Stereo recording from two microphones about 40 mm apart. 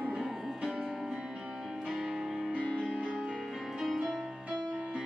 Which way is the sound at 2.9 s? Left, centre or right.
Right.